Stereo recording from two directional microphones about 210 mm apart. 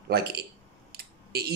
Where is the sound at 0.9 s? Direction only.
50° right (ahead or behind).